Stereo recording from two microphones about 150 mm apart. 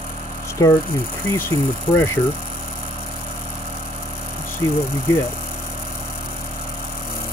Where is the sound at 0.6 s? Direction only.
20° left (ahead or behind).